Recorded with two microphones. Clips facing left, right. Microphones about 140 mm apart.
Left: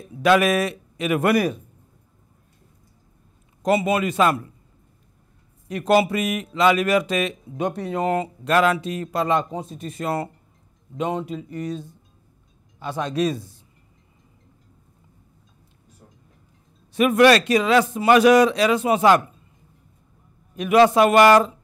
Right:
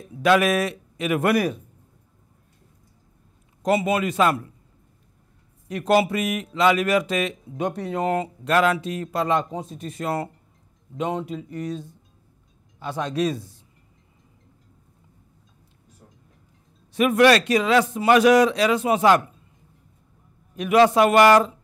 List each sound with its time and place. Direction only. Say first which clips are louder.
0.0 s a man's voice: left 1 dB; 10° left (ahead or behind)
3.6 s speech: left 1 dB; 5° left (ahead or behind)
5.7 s speech: left 1 dB; 10° left (ahead or behind)
12.8 s speech: left 1 dB; 5° left (ahead or behind)
16.0 s a sound: left 1 dB; 20° left (ahead or behind)
16.9 s speech: left 1 dB; 10° left (ahead or behind)
20.5 s speech: left 1 dB; 5° left (ahead or behind)